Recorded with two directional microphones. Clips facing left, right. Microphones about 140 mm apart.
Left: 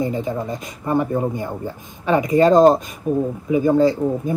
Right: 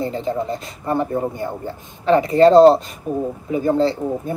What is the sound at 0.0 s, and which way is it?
Speech, 15° left (ahead or behind).